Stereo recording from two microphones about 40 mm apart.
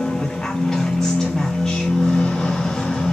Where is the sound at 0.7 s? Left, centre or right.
Centre.